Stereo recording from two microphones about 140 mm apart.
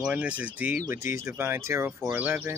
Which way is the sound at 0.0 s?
10° right (ahead or behind).